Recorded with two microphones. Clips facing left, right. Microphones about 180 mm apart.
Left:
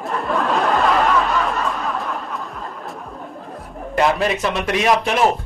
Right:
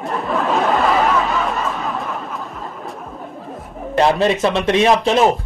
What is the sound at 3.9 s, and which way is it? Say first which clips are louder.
A man's voice: right 3 dB; 30° right (ahead or behind).